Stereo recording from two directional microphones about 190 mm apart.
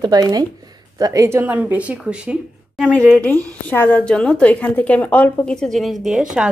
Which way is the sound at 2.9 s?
5° left (ahead or behind).